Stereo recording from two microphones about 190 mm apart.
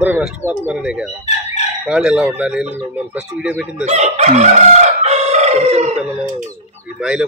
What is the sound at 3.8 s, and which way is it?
Crowing, 35° right (ahead or behind).